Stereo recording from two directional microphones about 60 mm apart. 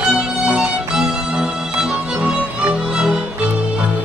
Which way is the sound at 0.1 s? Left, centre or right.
Centre.